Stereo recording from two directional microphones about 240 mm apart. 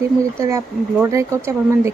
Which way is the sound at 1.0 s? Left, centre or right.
Centre.